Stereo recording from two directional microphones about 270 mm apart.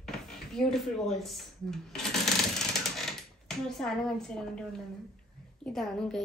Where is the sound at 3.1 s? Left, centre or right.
Centre.